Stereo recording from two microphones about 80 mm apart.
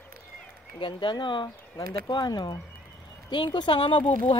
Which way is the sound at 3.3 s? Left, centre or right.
Left.